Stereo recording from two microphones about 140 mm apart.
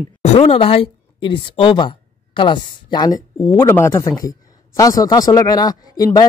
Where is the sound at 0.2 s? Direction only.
50° left (ahead or behind).